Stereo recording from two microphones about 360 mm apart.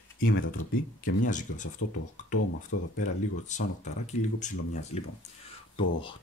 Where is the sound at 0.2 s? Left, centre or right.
Left.